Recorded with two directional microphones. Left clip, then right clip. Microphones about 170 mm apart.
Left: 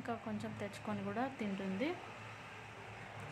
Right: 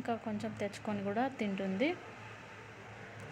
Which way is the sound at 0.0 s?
15° right (ahead or behind).